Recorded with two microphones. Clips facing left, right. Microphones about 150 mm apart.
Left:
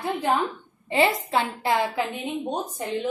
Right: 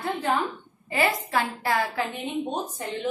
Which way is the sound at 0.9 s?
25° left (ahead or behind).